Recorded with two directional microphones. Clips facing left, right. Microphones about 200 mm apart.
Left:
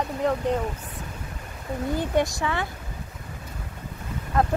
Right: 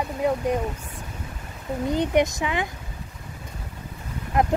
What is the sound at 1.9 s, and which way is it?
Speech, 20° right (ahead or behind).